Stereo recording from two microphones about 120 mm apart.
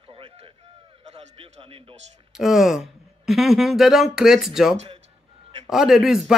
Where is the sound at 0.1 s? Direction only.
50° right (ahead or behind).